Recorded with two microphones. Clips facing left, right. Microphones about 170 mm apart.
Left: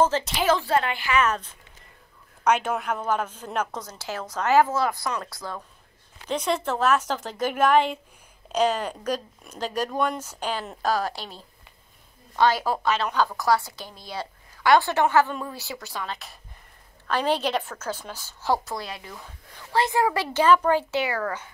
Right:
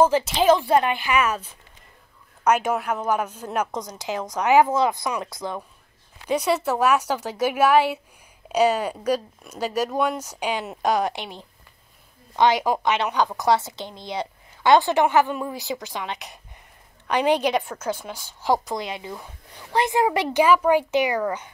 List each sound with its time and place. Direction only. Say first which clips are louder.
0.0 s a woman's voice: right 4 dB; 10° right (ahead or behind)
6.2 s a woman's voice: right 4 dB; 10° right (ahead or behind)